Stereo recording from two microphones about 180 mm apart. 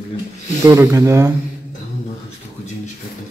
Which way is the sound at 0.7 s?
15° right (ahead or behind).